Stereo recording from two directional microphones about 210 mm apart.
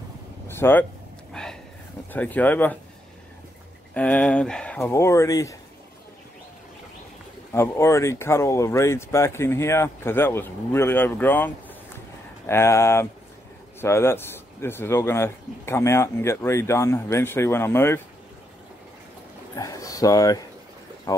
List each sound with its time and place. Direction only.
0.5 s speech: 10° left (ahead or behind)
1.3 s a sound: 5° left (ahead or behind)
2.0 s speech: 10° left (ahead or behind)
3.9 s speech: 5° left (ahead or behind)
7.5 s speech: 15° left (ahead or behind)
19.5 s speech: 15° left (ahead or behind)